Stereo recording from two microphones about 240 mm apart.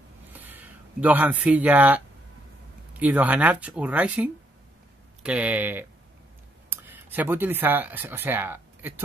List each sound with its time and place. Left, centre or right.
0.3 s speech: centre